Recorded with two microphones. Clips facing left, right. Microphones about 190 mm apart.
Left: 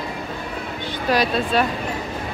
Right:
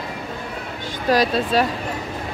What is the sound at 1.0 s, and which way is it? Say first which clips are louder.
Speech: right 2 dB; 40° right (ahead or behind).